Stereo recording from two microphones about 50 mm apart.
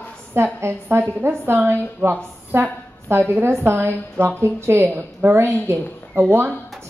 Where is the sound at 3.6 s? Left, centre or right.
Right.